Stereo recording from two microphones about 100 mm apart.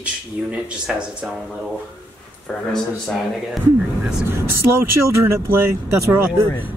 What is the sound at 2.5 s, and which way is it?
Speech, 10° left (ahead or behind).